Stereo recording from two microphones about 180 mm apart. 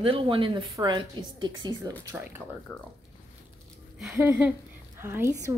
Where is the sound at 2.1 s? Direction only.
10° right (ahead or behind).